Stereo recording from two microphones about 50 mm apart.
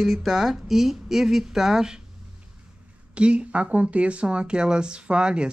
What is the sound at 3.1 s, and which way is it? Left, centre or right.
Speech, right.